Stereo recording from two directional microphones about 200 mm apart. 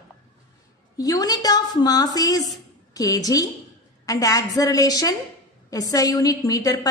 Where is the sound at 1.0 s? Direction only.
20° left (ahead or behind).